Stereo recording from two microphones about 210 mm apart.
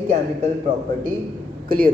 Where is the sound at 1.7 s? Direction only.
45° right (ahead or behind).